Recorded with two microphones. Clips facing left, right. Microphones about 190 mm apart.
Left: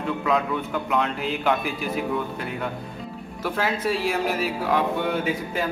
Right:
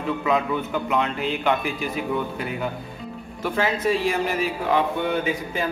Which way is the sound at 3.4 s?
5° left (ahead or behind).